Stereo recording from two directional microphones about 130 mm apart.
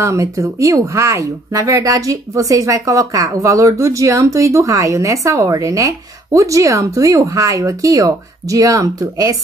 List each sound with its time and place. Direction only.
0.0 s speech: 25° right (ahead or behind)